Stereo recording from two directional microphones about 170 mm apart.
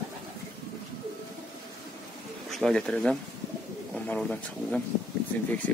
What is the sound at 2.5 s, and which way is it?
Speech, 5° left (ahead or behind).